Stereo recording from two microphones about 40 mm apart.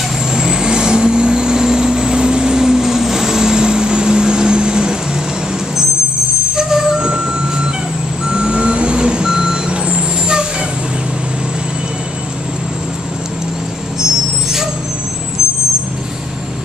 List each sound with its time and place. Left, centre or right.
0.3 s vehicle: centre
6.5 s vehicle: centre